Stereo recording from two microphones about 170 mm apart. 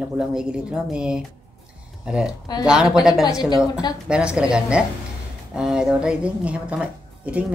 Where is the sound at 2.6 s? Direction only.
5° right (ahead or behind).